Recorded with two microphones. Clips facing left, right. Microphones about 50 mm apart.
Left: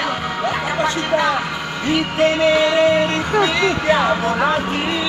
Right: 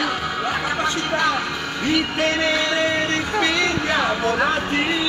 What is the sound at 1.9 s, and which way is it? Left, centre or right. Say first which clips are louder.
Music: left 5 dB; centre.